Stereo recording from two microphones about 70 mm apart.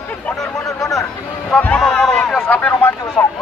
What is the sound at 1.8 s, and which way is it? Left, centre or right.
Speech, centre.